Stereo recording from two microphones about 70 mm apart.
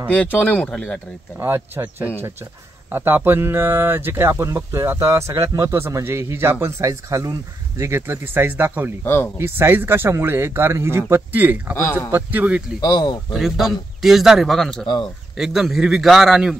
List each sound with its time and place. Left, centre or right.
0.1 s speech: left
1.4 s speech: right
4.3 s speech: right
5.7 s speech: right
6.9 s speech: right
7.9 s speech: right
9.0 s a man's voice: left
9.4 s speech: right
11.7 s a man's voice: left
12.1 s a man's voice: right
12.8 s speech: left
13.3 s a man's voice: centre
15.3 s a man's voice: centre